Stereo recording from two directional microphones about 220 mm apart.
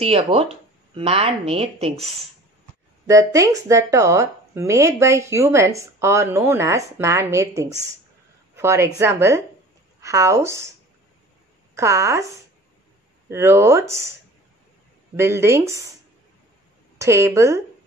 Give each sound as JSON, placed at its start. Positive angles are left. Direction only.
{"t": 0.0, "sound": "speech", "side_deg": -25}
{"t": 3.1, "sound": "speech", "side_deg": -15}
{"t": 11.7, "sound": "speech", "side_deg": -15}
{"t": 13.3, "sound": "speech", "side_deg": -10}
{"t": 15.1, "sound": "speech", "side_deg": -10}
{"t": 17.0, "sound": "speech", "side_deg": -15}